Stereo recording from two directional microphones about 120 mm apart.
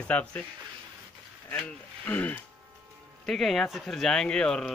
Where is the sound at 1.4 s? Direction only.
15° left (ahead or behind).